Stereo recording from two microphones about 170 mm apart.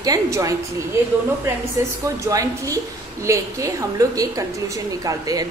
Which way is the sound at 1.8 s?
15° right (ahead or behind).